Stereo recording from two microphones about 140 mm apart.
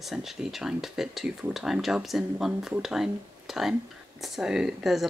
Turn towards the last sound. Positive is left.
turn(degrees=0)  # may be behind; listen again after turning